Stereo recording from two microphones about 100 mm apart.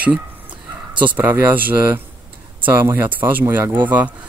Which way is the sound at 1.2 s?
20° right (ahead or behind).